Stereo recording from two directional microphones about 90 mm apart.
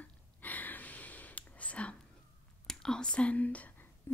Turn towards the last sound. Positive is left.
turn(degrees=25)  # may be behind; listen again after turning